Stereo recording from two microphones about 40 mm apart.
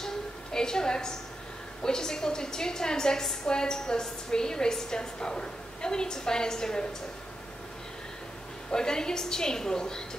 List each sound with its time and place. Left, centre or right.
0.0 s a sound: centre
1.8 s a woman's voice: centre
8.7 s a woman's voice: centre